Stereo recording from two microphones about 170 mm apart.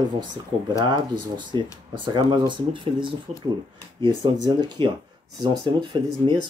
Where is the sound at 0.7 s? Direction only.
25° right (ahead or behind).